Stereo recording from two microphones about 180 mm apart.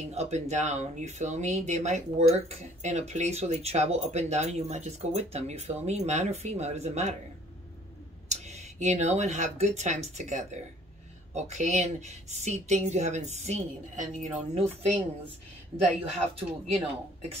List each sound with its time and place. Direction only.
0.1 s speech: 40° right (ahead or behind)
8.3 s speech: 40° right (ahead or behind)
16.1 s speech: 35° right (ahead or behind)